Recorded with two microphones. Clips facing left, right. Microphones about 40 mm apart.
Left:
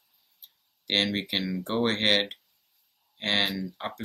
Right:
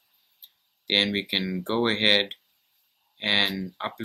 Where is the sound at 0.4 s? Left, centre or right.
Right.